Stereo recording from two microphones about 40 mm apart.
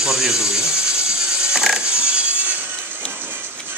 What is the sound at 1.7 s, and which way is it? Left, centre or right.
Music, right.